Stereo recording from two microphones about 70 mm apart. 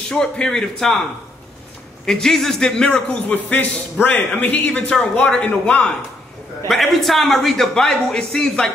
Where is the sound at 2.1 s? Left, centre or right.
Centre.